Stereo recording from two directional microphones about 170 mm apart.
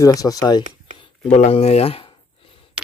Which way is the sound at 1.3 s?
40° left (ahead or behind).